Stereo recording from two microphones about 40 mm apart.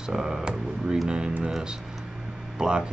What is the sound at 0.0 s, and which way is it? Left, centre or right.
Speech, centre.